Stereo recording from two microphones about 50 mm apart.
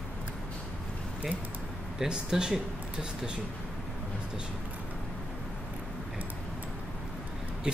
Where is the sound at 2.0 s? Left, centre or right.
Centre.